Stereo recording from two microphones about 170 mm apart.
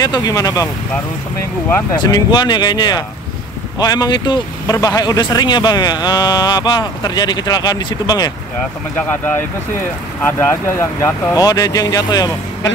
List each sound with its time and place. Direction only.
0.0 s speech: 20° left (ahead or behind)
2.0 s speech: 25° left (ahead or behind)
8.9 s speech: 10° left (ahead or behind)